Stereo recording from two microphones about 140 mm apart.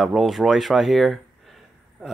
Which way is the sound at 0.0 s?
Centre (ahead or behind).